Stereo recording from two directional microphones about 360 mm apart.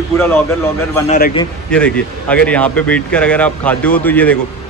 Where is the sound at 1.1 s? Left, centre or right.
Left.